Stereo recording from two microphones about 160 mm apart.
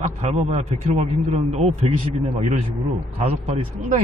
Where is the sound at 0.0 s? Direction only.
45° right (ahead or behind).